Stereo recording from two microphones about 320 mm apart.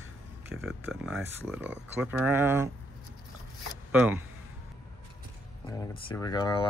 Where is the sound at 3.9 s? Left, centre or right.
Centre.